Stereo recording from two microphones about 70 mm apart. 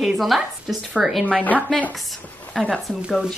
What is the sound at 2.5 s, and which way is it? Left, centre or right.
Speech, centre.